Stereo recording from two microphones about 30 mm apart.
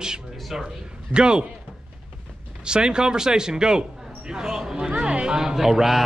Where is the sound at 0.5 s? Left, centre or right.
Centre.